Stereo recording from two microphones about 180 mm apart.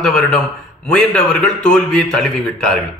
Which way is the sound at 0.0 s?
5° left (ahead or behind).